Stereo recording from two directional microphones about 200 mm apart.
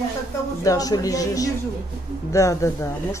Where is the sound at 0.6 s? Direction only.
15° left (ahead or behind).